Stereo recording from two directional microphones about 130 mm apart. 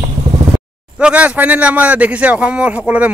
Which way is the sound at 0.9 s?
10° right (ahead or behind).